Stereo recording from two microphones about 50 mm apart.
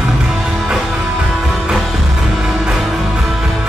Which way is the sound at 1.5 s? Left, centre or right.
Centre.